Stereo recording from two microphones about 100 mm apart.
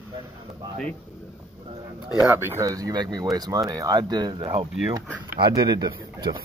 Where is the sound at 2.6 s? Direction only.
35° right (ahead or behind).